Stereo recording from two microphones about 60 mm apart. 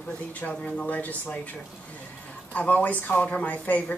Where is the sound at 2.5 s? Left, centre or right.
Left.